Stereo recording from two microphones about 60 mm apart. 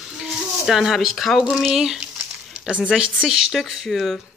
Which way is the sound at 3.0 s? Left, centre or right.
Centre.